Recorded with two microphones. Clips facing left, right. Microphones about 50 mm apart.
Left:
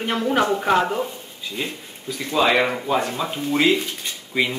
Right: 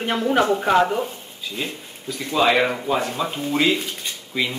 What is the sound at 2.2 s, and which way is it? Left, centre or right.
Speech, centre.